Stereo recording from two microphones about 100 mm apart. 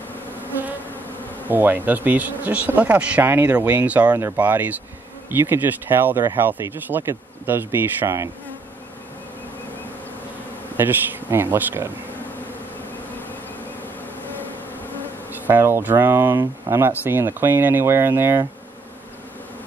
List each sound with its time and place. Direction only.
1.5 s speech: 20° right (ahead or behind)
10.8 s speech: 20° right (ahead or behind)
15.4 s speech: 20° right (ahead or behind)